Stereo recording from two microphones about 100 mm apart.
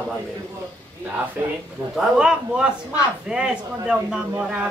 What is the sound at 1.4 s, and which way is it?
Speech, 20° right (ahead or behind).